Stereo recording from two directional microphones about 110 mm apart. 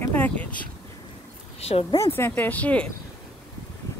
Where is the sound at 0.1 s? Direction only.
15° left (ahead or behind).